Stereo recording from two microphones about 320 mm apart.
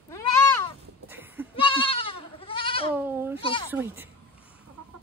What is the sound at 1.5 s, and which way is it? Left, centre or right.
Goat, centre.